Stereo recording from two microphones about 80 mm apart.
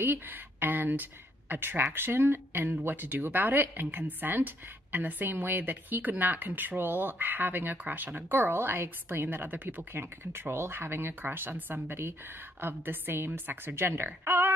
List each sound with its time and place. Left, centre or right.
0.0 s a woman's voice: right